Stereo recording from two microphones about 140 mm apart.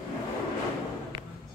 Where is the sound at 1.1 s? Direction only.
35° right (ahead or behind).